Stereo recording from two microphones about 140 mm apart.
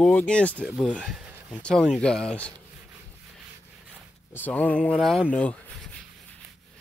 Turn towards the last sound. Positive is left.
turn(degrees=10)  # may be behind; listen again after turning